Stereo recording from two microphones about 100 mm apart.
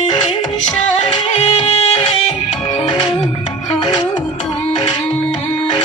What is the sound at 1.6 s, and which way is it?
Music, 85° left.